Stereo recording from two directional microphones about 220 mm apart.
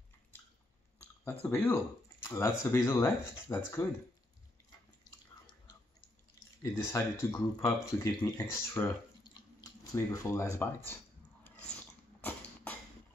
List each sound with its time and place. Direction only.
1.4 s speech: 10° left (ahead or behind)
5.5 s a sound: 20° left (ahead or behind)
6.6 s speech: 10° left (ahead or behind)
11.7 s dog: 10° left (ahead or behind)